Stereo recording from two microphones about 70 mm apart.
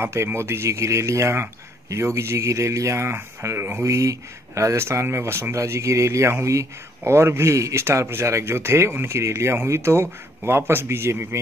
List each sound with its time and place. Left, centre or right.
0.0 s speech: right